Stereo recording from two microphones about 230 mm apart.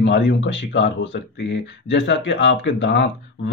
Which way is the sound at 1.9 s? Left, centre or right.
Left.